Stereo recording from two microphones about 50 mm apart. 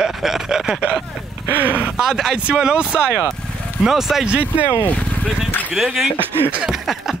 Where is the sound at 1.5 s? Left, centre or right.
Right.